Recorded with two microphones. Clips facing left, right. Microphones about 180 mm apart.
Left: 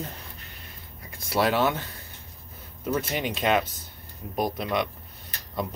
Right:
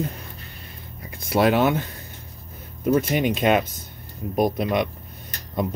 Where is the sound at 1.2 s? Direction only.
20° right (ahead or behind).